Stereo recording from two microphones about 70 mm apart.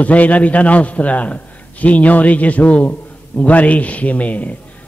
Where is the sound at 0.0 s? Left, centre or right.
Left.